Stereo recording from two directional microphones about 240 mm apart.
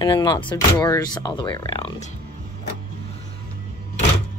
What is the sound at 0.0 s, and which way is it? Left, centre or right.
Speech, centre.